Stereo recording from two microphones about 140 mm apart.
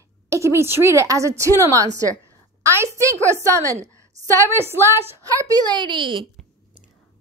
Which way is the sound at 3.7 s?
55° right (ahead or behind).